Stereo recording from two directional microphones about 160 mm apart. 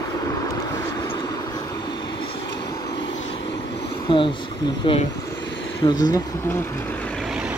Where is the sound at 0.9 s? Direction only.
25° left (ahead or behind).